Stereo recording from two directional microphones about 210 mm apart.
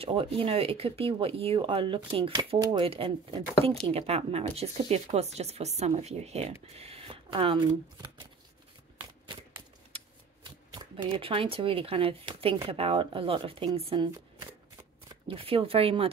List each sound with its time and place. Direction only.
0.0 s speech: 25° right (ahead or behind)
10.7 s speech: 25° right (ahead or behind)